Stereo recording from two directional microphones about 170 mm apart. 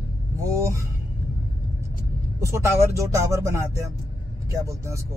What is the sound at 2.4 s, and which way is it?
Speech, 15° right (ahead or behind).